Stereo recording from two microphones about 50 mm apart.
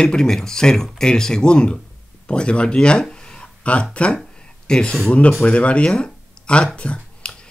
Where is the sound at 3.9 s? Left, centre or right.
Left.